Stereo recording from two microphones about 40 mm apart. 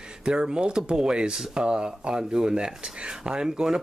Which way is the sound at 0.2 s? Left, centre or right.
Right.